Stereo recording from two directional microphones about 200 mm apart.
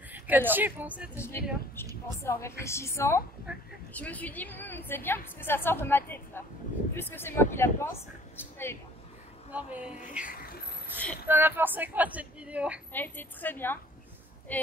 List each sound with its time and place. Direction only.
0.1 s a woman's voice: 10° right (ahead or behind)
1.1 s a woman's voice: 10° left (ahead or behind)
3.5 s speech: 5° right (ahead or behind)
3.9 s a woman's voice: 10° left (ahead or behind)
9.5 s speech: 5° right (ahead or behind)
10.2 s vehicle: 50° left (ahead or behind)
11.2 s speech: 10° right (ahead or behind)
12.9 s a woman's voice: 10° left (ahead or behind)